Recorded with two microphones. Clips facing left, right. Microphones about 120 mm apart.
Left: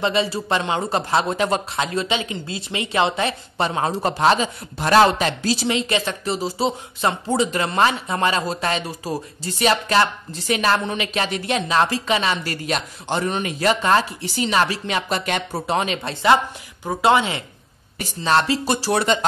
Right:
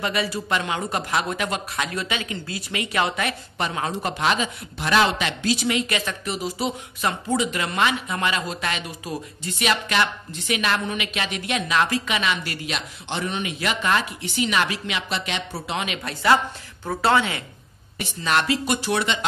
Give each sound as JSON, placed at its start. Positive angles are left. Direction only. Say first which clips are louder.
{"t": 0.0, "sound": "speech", "louder": "left 4 dB", "side_deg": 25}
{"t": 17.9, "sound": "speech", "louder": "left 4 dB", "side_deg": 30}